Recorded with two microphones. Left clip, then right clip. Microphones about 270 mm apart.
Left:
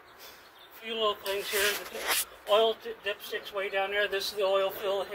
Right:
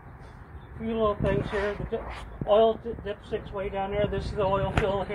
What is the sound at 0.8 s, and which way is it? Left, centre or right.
Speech, centre.